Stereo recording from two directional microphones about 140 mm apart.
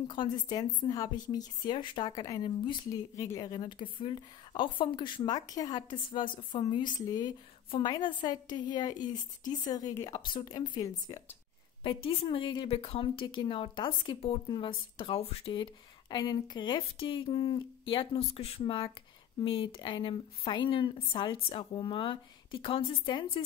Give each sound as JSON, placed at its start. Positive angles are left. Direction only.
{"t": 0.0, "sound": "a woman's voice", "side_deg": 35}
{"t": 11.8, "sound": "a woman's voice", "side_deg": 40}